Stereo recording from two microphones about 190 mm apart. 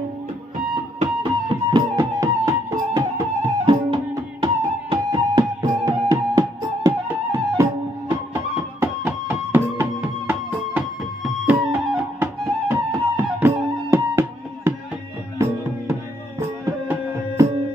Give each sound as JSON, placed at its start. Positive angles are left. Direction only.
{"t": 1.0, "sound": "music", "side_deg": -20}